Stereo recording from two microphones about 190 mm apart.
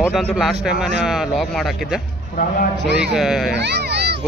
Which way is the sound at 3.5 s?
65° right (ahead or behind).